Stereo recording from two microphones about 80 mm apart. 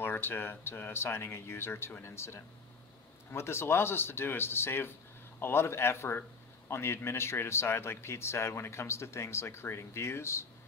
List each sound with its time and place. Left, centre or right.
0.0 s speech: left